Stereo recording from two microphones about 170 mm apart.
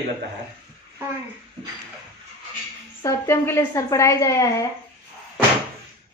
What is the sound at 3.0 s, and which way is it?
A woman's voice, 15° left (ahead or behind).